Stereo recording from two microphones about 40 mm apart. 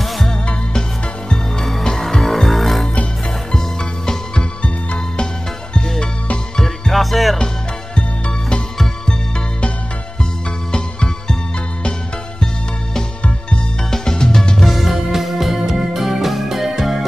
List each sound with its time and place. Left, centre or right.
1.3 s music: centre
3.5 s music: centre
6.9 s music: centre
10.7 s music: centre
13.8 s music: centre
14.6 s music: centre